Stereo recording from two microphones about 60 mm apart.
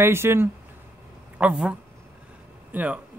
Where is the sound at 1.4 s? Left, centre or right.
Centre.